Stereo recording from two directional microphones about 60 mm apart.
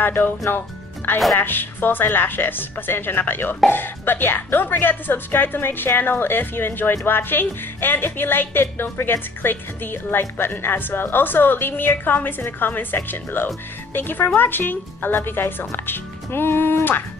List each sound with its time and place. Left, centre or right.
0.0 s speech: left
1.4 s speech: left